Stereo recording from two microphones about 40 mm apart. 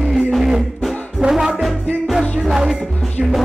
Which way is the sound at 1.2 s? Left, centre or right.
Centre.